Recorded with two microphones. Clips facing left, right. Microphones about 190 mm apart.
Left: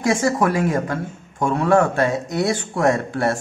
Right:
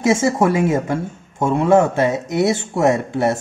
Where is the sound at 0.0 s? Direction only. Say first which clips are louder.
Right 3 dB; 20° right (ahead or behind).